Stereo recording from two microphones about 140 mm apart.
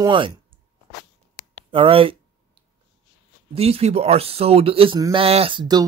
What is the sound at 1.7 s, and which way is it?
Speech, 40° right (ahead or behind).